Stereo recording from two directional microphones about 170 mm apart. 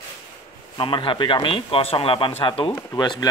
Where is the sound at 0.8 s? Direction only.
30° left (ahead or behind).